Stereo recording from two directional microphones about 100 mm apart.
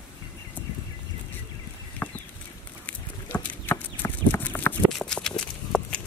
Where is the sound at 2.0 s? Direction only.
25° left (ahead or behind).